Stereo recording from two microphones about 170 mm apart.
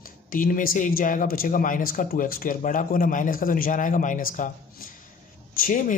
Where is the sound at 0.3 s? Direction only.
55° left (ahead or behind).